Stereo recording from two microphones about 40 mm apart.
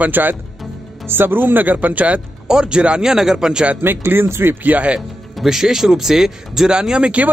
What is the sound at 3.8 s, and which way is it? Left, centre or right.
Speech, right.